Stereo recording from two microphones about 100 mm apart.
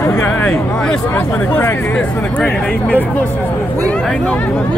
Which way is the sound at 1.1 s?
20° left (ahead or behind).